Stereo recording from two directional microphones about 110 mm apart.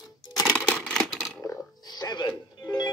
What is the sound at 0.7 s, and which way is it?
Camera, 10° left (ahead or behind).